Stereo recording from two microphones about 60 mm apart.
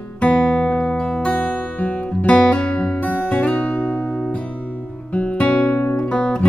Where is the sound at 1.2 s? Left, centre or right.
Centre.